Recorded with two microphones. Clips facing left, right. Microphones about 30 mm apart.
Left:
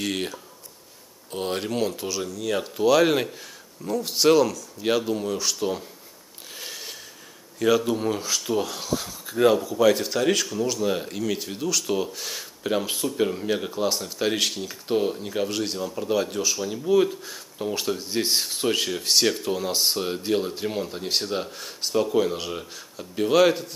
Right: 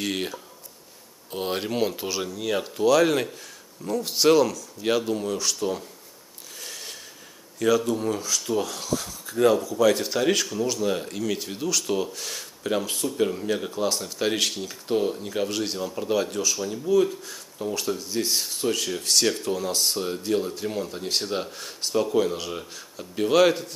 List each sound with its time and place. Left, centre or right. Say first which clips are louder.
0.0 s speech: even; centre
2.5 s speech: even; centre
6.7 s a sound: right 1 dB; centre
7.5 s speech: left 1 dB; centre
9.9 s speech: even; centre; by 18.9 s left
18.9 s speech: left 1 dB; centre